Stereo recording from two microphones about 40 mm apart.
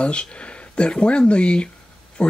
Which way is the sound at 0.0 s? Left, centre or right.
Left.